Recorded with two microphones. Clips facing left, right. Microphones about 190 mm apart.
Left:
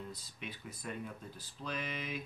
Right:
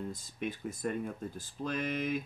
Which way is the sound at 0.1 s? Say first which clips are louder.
Right 9 dB; 50° right (ahead or behind).